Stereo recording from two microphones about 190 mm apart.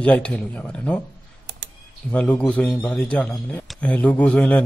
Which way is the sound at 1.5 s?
60° right (ahead or behind).